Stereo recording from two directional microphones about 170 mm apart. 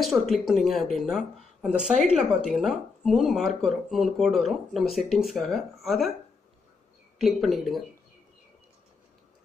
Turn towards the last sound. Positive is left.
turn(degrees=0)  # may be behind; listen again after turning